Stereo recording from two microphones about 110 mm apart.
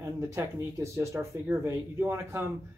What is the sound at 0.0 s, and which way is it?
Speech, 25° right (ahead or behind).